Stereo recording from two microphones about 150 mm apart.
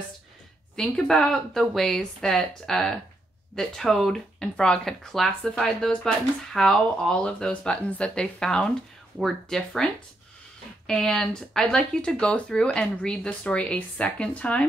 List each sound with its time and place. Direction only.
0.7 s speech: 5° left (ahead or behind)
10.9 s speech: 5° left (ahead or behind)